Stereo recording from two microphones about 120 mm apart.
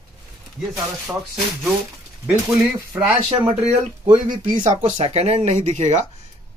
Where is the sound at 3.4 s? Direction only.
65° right (ahead or behind).